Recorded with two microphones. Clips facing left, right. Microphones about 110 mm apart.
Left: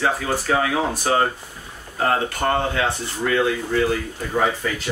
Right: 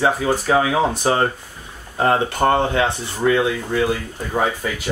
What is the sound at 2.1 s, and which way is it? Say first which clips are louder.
Speech: right 4 dB; 25° right (ahead or behind).